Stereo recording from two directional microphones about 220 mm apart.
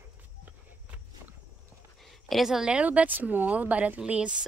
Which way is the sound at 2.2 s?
Centre (ahead or behind).